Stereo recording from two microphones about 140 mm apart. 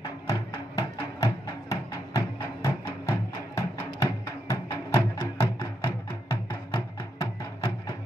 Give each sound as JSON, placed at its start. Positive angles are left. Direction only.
{"t": 0.3, "sound": "music", "side_deg": 20}